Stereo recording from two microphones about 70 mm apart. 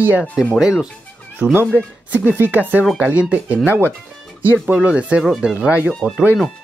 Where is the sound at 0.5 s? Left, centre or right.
Centre.